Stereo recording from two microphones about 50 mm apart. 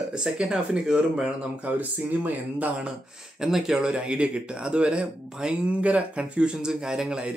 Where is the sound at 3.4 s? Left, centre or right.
Centre.